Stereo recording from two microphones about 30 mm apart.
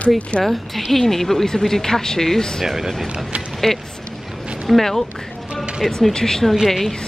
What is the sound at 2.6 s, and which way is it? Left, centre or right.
Speech, centre.